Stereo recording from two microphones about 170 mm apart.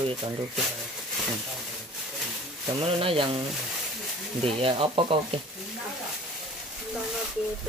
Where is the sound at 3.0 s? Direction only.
35° right (ahead or behind).